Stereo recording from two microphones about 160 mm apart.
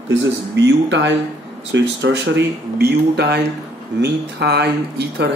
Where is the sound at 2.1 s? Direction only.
90° right.